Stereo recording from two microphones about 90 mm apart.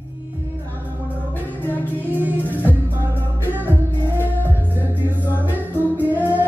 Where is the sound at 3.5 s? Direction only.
25° left (ahead or behind).